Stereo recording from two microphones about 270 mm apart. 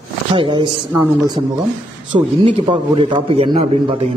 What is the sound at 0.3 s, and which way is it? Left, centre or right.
Speech, centre.